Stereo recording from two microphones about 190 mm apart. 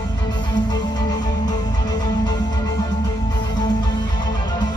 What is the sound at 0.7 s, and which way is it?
Music, 20° left (ahead or behind).